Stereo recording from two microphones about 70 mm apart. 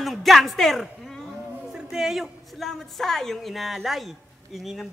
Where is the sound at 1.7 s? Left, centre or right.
Centre.